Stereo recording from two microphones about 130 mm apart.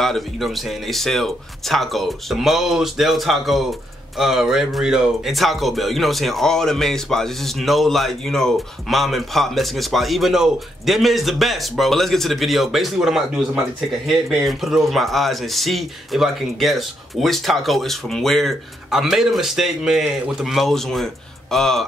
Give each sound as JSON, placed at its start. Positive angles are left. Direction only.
{"t": 0.0, "sound": "speech", "side_deg": 0}